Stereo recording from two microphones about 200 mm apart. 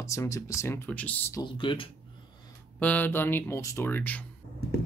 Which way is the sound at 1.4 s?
25° left (ahead or behind).